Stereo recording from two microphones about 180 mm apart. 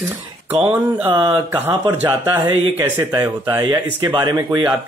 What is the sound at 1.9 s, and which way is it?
Speech, 10° right (ahead or behind).